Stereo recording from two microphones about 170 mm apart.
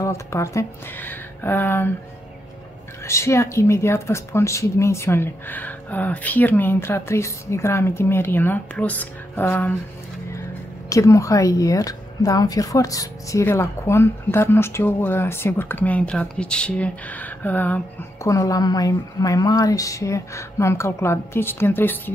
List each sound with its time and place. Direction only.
0.0 s a woman's voice: 15° left (ahead or behind)
3.1 s a woman's voice: 15° left (ahead or behind)
10.9 s a woman's voice: 20° left (ahead or behind)